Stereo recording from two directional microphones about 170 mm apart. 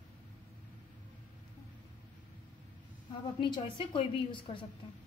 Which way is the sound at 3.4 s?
30° left (ahead or behind).